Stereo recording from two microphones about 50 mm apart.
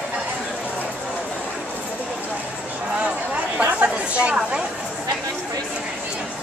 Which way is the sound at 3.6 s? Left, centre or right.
Right.